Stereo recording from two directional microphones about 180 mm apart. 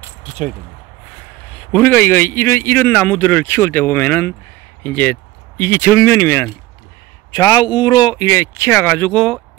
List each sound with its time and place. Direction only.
1.7 s a man's voice: 10° left (ahead or behind)